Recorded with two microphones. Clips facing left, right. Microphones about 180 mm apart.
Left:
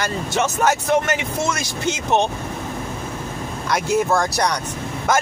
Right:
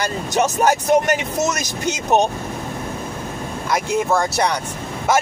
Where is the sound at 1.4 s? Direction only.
40° right (ahead or behind).